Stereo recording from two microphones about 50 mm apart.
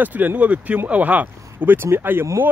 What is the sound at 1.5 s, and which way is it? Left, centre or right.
Speech, right.